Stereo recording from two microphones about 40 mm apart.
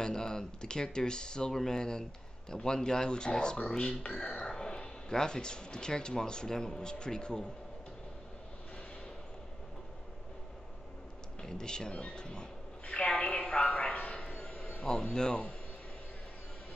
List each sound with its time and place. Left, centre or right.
0.0 s speech: centre
11.4 s a woman's voice: centre
14.1 s a sound: left
14.8 s speech: left